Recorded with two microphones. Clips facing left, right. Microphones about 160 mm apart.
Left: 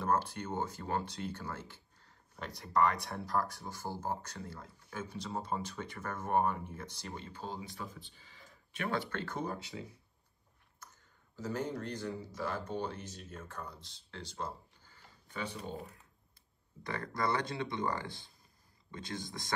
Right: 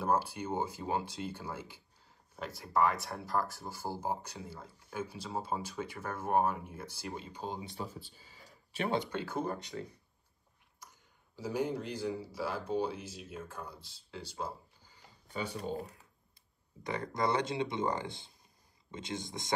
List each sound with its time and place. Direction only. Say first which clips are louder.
0.0 s speech: right 1 dB; 10° right (ahead or behind); by 8.0 s 30° right (ahead or behind)
8.1 s a sound: right 2 dB; 40° right (ahead or behind)
8.9 s speech: right 2 dB; 20° right (ahead or behind)
9.2 s speech: right 3 dB; 5° right (ahead or behind)
10.8 s speech: even; 10° right (ahead or behind)
16.8 s speech: right 2 dB; 20° right (ahead or behind)